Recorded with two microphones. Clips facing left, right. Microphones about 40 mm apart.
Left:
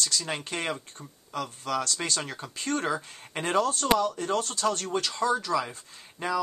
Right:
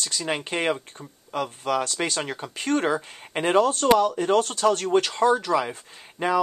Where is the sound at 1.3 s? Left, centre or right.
Right.